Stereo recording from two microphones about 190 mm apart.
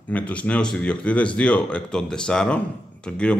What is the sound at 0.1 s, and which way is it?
Speech, 5° left (ahead or behind).